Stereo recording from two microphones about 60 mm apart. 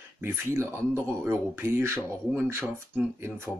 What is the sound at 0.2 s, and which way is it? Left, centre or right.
Speech, right.